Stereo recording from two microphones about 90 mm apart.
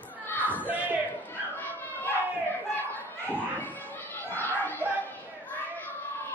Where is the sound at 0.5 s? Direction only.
20° right (ahead or behind).